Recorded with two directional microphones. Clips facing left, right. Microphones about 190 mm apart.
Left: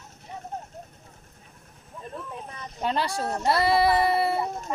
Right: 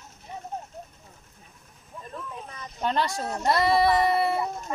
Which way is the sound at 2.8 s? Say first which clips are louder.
Even; 5° left (ahead or behind).